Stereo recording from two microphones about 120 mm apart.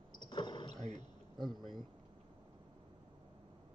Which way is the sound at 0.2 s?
40° left (ahead or behind).